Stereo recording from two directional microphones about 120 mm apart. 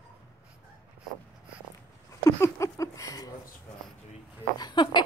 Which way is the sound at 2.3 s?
25° left (ahead or behind).